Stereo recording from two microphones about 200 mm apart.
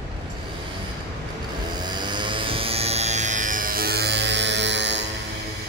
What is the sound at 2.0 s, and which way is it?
Music, 25° right (ahead or behind).